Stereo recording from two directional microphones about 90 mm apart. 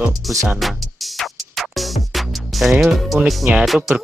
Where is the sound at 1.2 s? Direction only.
Centre (ahead or behind).